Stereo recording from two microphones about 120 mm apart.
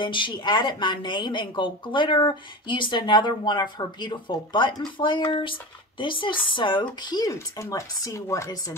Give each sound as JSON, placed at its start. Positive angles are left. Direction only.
{"t": 0.0, "sound": "speech", "side_deg": 40}